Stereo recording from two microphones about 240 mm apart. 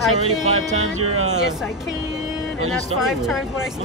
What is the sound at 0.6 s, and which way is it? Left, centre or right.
Music, right.